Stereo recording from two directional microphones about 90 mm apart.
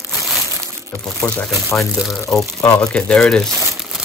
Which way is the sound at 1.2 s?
40° left (ahead or behind).